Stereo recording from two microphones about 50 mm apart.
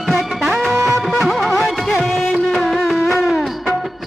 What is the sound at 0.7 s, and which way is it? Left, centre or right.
Music, right.